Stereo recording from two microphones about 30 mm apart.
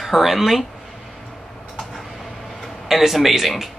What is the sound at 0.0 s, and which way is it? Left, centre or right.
Speech, centre.